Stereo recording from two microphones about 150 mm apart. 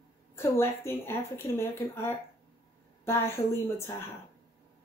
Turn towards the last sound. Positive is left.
turn(degrees=15)  # may be behind; listen again after turning